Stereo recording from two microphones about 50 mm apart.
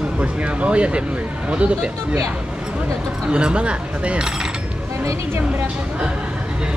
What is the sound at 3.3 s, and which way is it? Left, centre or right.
Speech, centre.